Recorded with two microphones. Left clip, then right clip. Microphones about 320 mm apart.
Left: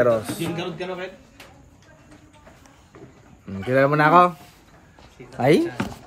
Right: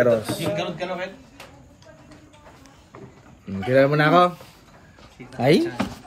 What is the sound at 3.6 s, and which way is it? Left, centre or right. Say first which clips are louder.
Speech: even; centre.